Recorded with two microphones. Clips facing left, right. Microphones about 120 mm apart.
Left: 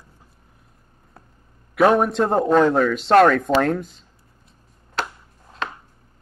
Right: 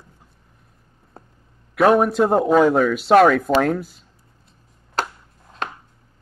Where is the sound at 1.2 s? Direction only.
25° right (ahead or behind).